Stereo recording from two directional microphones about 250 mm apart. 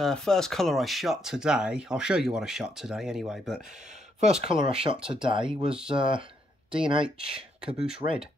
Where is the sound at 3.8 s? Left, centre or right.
Right.